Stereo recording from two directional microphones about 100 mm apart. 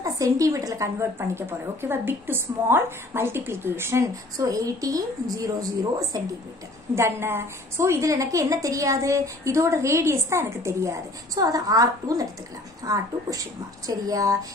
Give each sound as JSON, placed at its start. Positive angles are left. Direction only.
{"t": 0.0, "sound": "a woman's voice", "side_deg": -35}
{"t": 7.0, "sound": "a woman's voice", "side_deg": -25}